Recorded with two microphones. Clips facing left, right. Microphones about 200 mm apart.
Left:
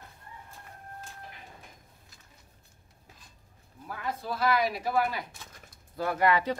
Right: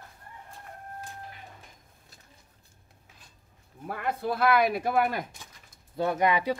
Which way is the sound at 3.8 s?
65° right (ahead or behind).